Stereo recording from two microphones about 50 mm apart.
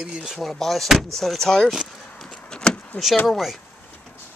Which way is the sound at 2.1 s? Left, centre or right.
Centre.